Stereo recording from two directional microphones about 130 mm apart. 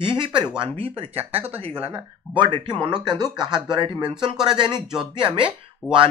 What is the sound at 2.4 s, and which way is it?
Speech, 35° right (ahead or behind).